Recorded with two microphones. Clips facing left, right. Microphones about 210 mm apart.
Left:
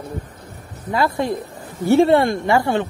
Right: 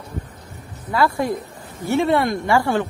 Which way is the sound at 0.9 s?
20° left (ahead or behind).